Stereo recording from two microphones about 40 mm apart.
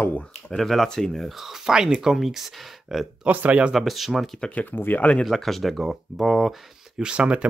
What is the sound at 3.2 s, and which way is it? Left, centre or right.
Speech, right.